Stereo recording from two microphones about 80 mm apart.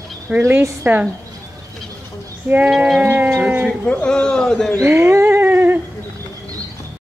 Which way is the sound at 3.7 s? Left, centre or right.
Centre.